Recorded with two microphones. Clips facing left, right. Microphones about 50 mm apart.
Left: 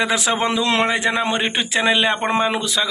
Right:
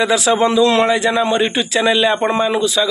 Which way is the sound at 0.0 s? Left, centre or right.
Left.